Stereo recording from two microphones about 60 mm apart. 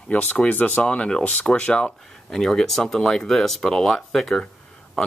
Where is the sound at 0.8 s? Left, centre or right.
Centre.